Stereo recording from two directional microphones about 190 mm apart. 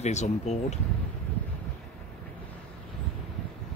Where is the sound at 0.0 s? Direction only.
35° left (ahead or behind).